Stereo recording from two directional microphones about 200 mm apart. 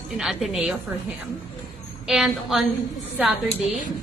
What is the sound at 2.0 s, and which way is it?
Speech, centre (ahead or behind).